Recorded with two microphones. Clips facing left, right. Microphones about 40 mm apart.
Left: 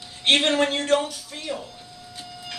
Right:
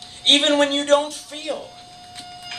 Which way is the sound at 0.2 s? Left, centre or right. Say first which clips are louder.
Right 3 dB; right.